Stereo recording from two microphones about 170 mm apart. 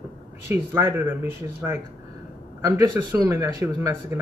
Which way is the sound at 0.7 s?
10° right (ahead or behind).